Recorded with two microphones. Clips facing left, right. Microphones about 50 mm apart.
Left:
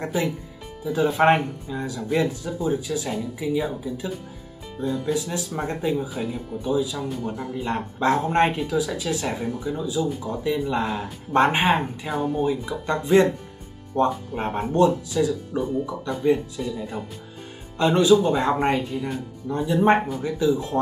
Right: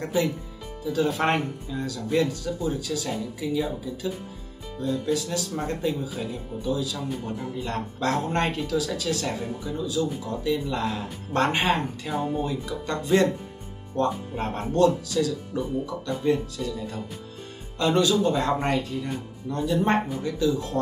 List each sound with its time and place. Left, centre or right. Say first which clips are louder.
0.0 s speech: even; centre